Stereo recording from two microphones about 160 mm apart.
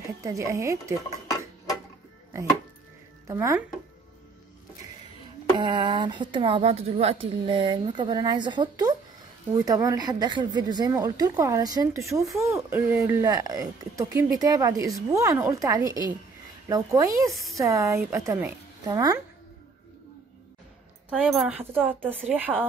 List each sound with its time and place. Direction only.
0.2 s speech: 20° right (ahead or behind)
3.3 s speech: 15° right (ahead or behind)
5.6 s a woman's voice: 25° right (ahead or behind)
21.1 s a woman's voice: 5° right (ahead or behind)